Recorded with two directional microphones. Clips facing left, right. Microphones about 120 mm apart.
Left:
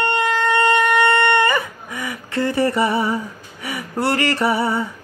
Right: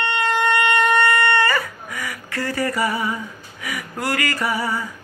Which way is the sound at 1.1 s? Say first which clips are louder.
Left 3 dB; 20° left (ahead or behind).